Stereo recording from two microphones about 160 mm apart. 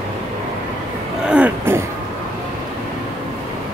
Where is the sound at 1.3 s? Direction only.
10° right (ahead or behind).